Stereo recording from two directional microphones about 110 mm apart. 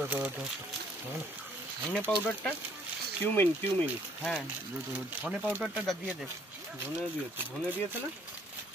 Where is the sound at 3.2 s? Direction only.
15° left (ahead or behind).